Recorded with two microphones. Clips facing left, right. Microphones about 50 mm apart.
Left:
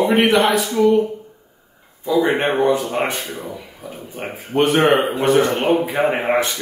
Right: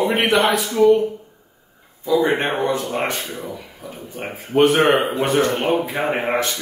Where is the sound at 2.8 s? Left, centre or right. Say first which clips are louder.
Left 2 dB; centre.